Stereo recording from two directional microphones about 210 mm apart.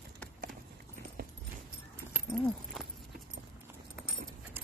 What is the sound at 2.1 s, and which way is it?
Horse, centre (ahead or behind).